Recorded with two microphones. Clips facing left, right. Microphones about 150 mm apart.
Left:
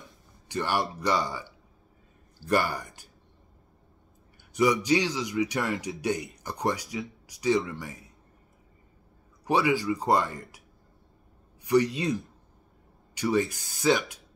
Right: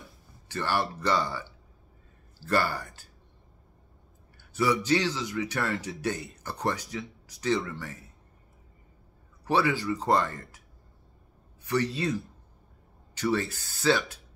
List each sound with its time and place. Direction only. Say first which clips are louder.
0.5 s a man's voice: left 1 dB; 15° left (ahead or behind)
4.6 s a man's voice: left 2 dB; 15° left (ahead or behind)
9.4 s a man's voice: left 1 dB; 15° left (ahead or behind)
11.6 s a man's voice: left 4 dB; 15° left (ahead or behind)